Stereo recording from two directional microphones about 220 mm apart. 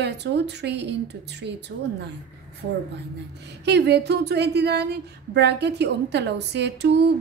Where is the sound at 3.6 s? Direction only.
50° right (ahead or behind).